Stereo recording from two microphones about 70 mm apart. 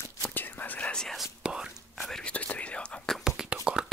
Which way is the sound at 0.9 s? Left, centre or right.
Centre.